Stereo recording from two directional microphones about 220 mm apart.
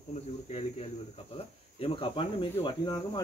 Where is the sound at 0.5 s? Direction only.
30° left (ahead or behind).